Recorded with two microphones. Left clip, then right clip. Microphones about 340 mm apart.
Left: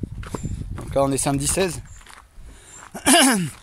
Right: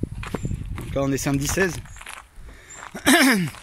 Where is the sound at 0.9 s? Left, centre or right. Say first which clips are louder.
Left 4 dB; centre.